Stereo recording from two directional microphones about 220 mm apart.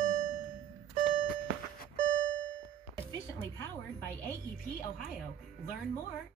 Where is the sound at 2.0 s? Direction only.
60° right (ahead or behind).